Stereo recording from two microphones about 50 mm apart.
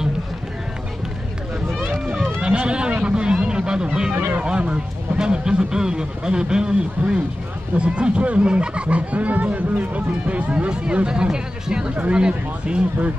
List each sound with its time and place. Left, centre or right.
2.4 s a sound: right
4.3 s speech: right
10.7 s speech: centre